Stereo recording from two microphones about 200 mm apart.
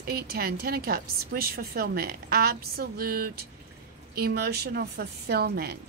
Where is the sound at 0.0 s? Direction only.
50° right (ahead or behind).